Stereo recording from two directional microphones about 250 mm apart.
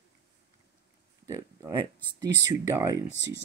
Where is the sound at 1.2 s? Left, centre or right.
Centre.